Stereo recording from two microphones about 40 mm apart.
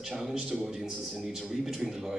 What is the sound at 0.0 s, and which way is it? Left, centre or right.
A man's voice, centre.